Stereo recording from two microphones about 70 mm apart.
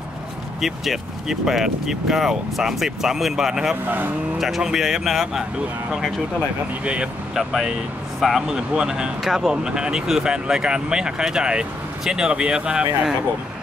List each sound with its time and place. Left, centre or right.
0.6 s speech: centre
3.8 s speech: right
4.4 s speech: centre
6.8 s speech: centre